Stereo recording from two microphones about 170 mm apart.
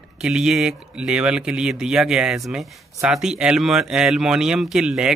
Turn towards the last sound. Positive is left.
turn(degrees=-5)  # may be behind; listen again after turning